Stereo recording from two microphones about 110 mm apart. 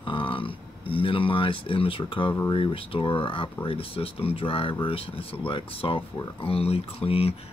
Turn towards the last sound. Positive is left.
turn(degrees=60)  # may be behind; listen again after turning